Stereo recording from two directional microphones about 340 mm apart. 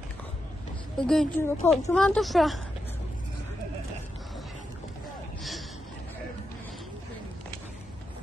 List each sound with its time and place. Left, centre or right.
0.9 s speech: centre